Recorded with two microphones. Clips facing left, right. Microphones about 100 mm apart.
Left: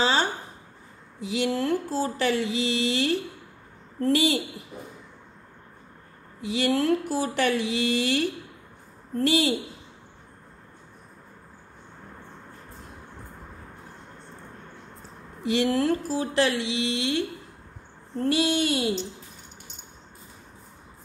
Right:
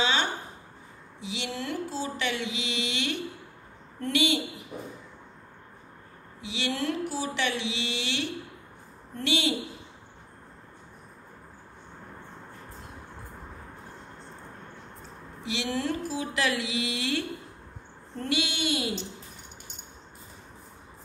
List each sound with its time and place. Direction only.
0.0 s a sound: 35° left (ahead or behind)
1.2 s mantra: 45° left (ahead or behind)
6.4 s a sound: 45° left (ahead or behind)
9.1 s mantra: 40° left (ahead or behind)
15.4 s mantra: 50° left (ahead or behind); by 17.2 s 25° left (ahead or behind)
18.2 s mantra: 40° left (ahead or behind)